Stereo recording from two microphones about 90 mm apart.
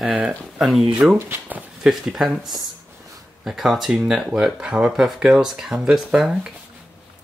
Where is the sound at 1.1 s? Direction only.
25° right (ahead or behind).